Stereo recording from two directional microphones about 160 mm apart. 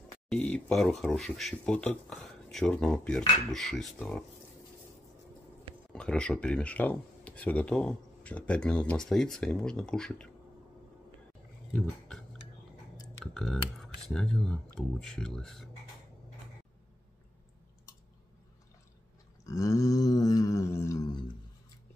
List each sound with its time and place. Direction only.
0.3 s speech: 5° left (ahead or behind)
5.9 s speech: 5° left (ahead or behind)
11.7 s speech: 5° left (ahead or behind)
13.2 s speech: 5° left (ahead or behind)
19.4 s a sound: 20° left (ahead or behind)